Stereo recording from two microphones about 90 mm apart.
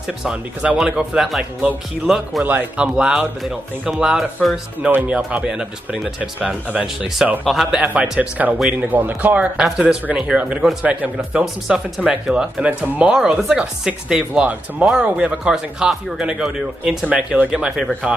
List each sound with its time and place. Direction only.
0.2 s speech: 10° right (ahead or behind)
2.4 s speech: 20° right (ahead or behind); by 4.6 s centre (ahead or behind)
4.8 s speech: 15° right (ahead or behind)
7.8 s speech: 15° right (ahead or behind)
12.6 s speech: 15° right (ahead or behind)